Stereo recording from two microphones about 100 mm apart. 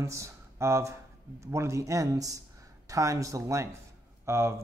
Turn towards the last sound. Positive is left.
turn(degrees=-25)  # may be behind; listen again after turning